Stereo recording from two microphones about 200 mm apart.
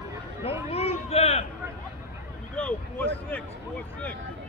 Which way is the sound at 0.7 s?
30° left (ahead or behind).